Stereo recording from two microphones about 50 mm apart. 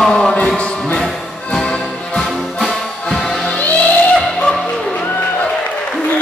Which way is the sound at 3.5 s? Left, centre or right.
Left.